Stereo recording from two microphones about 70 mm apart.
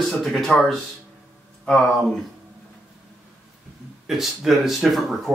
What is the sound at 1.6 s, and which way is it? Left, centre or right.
Speech, centre.